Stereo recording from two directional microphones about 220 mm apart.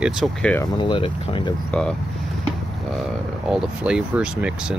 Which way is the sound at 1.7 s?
5° left (ahead or behind).